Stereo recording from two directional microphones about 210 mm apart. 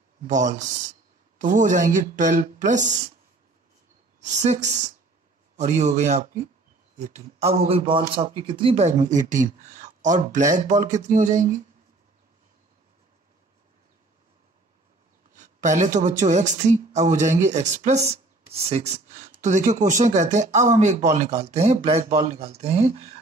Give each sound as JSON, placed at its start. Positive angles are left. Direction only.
{"t": 0.3, "sound": "a woman's voice", "side_deg": -35}
{"t": 4.2, "sound": "a woman's voice", "side_deg": -35}
{"t": 15.3, "sound": "a woman's voice", "side_deg": -35}